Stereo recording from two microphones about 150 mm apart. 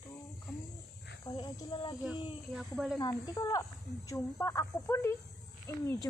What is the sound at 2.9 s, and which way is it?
Speech, 25° left (ahead or behind).